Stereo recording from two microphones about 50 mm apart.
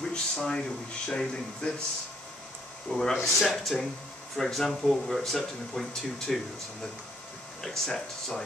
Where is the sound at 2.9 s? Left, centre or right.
Centre.